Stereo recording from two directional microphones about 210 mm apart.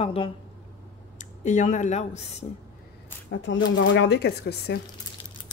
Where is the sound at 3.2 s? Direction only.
60° left (ahead or behind).